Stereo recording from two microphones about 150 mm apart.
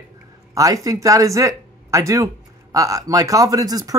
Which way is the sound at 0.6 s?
25° right (ahead or behind).